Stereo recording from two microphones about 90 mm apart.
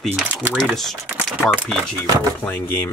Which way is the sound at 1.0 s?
15° right (ahead or behind).